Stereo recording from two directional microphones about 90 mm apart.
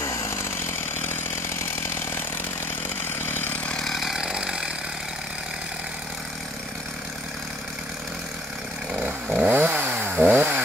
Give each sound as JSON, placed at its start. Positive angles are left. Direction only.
{"t": 0.0, "sound": "chainsaw", "side_deg": 35}
{"t": 3.2, "sound": "chainsaw", "side_deg": 25}
{"t": 3.7, "sound": "chainsaw", "side_deg": 0}
{"t": 9.0, "sound": "chainsaw", "side_deg": -15}